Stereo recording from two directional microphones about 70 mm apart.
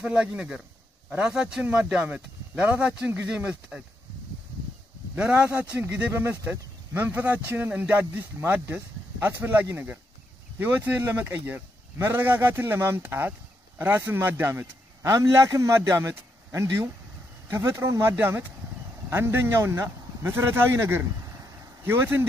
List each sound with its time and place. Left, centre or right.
0.0 s speech: centre
5.1 s speech: centre
5.8 s speech: right
14.5 s a man's voice: right